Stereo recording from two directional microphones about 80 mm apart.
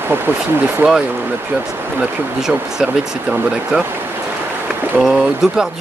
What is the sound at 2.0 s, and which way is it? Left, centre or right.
Speech, centre.